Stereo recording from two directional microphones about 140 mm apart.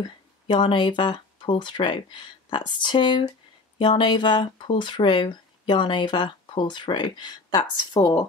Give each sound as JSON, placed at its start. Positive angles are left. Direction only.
{"t": 0.5, "sound": "speech", "side_deg": 35}